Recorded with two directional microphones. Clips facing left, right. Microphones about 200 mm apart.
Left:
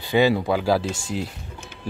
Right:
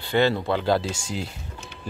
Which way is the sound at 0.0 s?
15° left (ahead or behind).